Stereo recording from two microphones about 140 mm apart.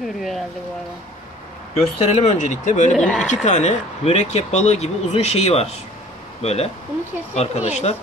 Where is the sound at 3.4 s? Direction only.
55° left (ahead or behind).